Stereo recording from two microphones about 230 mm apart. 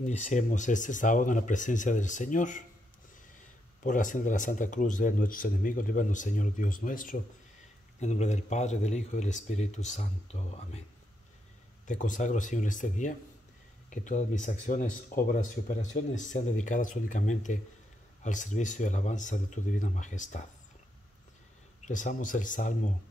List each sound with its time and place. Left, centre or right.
0.0 s speech: left
3.8 s speech: left
11.9 s speech: left
21.8 s speech: left